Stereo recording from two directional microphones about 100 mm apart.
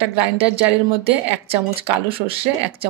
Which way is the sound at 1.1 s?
70° right (ahead or behind).